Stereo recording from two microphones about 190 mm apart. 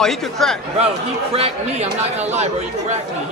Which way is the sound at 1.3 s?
30° right (ahead or behind).